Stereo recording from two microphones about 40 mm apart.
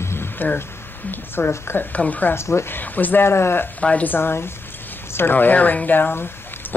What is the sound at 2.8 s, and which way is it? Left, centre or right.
Speech, left.